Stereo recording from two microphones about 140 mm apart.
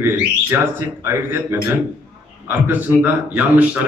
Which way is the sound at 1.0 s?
15° right (ahead or behind).